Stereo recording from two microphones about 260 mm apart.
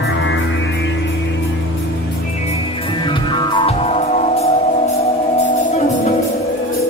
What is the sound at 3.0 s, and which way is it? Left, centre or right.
Music, centre.